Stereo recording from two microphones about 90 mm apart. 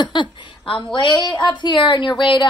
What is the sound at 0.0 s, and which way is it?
Speech, 60° left (ahead or behind).